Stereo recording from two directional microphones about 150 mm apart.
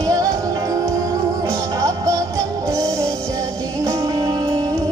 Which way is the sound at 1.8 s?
20° right (ahead or behind).